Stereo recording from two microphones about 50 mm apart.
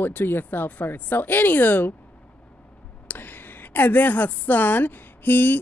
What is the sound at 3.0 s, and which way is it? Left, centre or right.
A woman's voice, left.